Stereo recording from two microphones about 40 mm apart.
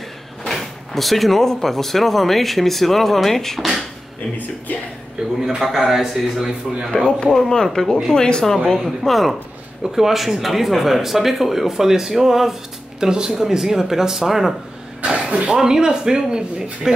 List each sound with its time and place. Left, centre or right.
0.5 s speech: centre
5.5 s speech: centre
7.3 s speech: centre
8.8 s speech: centre
15.0 s speech: right